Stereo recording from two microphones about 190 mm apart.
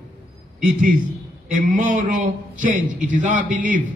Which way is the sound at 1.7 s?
45° right (ahead or behind).